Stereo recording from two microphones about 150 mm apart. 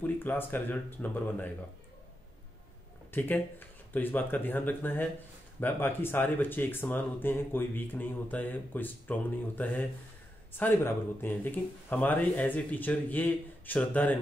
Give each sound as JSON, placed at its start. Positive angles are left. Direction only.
{"t": 0.0, "sound": "speech", "side_deg": 15}
{"t": 3.1, "sound": "speech", "side_deg": 15}